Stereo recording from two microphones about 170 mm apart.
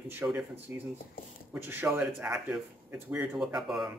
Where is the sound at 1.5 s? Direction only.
10° right (ahead or behind).